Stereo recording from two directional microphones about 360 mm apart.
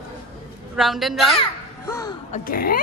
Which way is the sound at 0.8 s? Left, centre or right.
Centre.